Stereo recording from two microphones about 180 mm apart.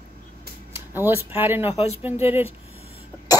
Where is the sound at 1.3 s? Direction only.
10° right (ahead or behind).